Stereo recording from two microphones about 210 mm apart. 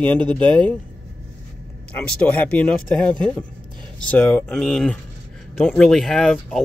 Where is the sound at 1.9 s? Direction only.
5° left (ahead or behind).